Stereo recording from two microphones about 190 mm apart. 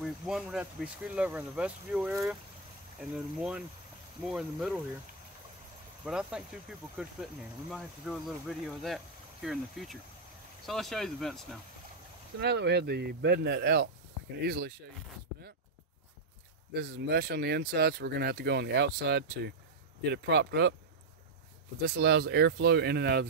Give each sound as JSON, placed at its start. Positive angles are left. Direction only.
{"t": 0.0, "sound": "speech", "side_deg": 0}
{"t": 6.0, "sound": "speech", "side_deg": -5}
{"t": 12.4, "sound": "speech", "side_deg": -60}
{"t": 16.7, "sound": "speech", "side_deg": -60}
{"t": 21.8, "sound": "speech", "side_deg": -60}